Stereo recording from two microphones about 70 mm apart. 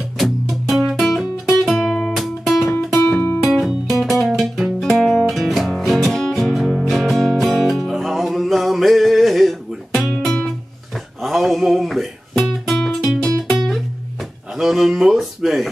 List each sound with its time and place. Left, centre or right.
0.2 s music: centre
3.0 s music: left
3.4 s music: centre
14.6 s a sound: centre